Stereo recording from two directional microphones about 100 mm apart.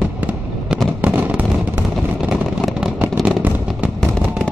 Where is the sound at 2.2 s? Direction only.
5° right (ahead or behind).